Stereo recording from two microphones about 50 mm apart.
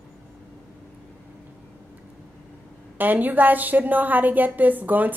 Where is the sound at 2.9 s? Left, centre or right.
Right.